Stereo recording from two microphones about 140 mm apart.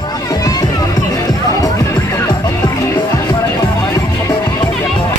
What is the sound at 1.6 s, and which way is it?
Music, 25° left (ahead or behind).